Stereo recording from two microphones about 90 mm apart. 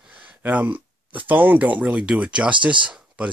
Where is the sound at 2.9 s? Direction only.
15° right (ahead or behind).